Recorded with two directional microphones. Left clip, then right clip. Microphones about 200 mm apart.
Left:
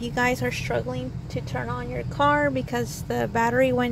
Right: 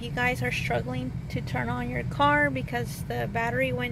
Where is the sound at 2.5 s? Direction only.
15° left (ahead or behind).